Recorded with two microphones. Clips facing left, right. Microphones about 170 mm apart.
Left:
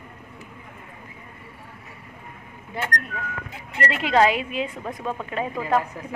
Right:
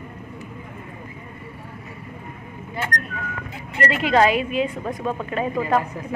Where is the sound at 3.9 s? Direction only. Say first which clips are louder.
Right 1 dB; 20° left (ahead or behind).